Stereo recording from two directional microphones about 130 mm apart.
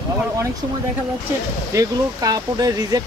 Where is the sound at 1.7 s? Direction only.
25° right (ahead or behind).